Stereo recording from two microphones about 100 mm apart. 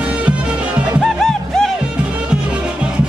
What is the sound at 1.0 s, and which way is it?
Music, 5° left (ahead or behind).